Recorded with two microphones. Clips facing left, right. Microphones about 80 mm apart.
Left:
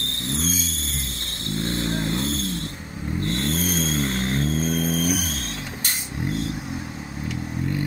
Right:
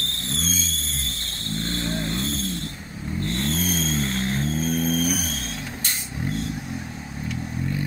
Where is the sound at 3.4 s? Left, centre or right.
Centre.